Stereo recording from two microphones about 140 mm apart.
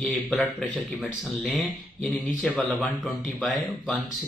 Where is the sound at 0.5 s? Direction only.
Centre (ahead or behind).